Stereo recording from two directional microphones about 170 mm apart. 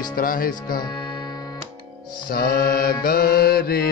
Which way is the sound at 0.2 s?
55° left (ahead or behind).